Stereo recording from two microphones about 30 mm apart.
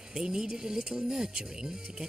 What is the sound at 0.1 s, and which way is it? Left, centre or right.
Speech, right.